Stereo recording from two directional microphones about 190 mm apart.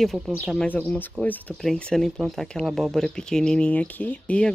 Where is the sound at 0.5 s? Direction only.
5° left (ahead or behind).